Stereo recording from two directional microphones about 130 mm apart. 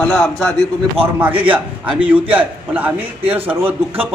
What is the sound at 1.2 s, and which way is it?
A man's voice, 15° right (ahead or behind).